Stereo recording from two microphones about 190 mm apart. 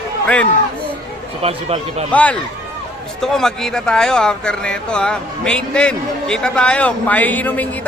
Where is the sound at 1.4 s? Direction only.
30° right (ahead or behind).